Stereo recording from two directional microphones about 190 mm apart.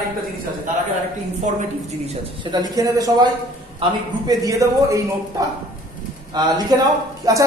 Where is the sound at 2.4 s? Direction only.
20° right (ahead or behind).